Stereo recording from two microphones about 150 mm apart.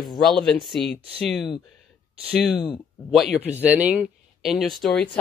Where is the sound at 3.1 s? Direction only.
5° right (ahead or behind).